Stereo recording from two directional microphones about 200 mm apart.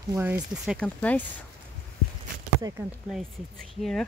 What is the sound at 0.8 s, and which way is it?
Speech, 5° left (ahead or behind).